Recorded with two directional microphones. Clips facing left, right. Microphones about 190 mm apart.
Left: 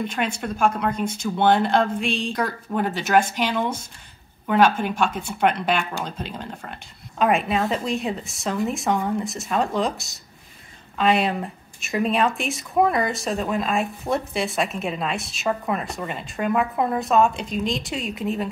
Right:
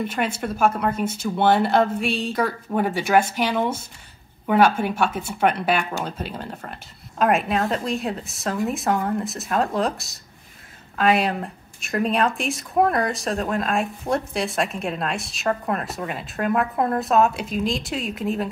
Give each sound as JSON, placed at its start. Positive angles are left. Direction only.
{"t": 0.0, "sound": "speech", "side_deg": -5}